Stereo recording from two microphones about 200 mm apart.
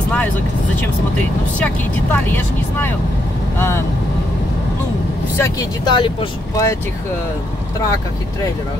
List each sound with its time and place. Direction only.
3.5 s speech: 10° left (ahead or behind)
5.4 s speech: 20° left (ahead or behind)